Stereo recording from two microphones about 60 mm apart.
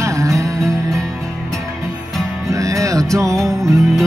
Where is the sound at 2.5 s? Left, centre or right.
Right.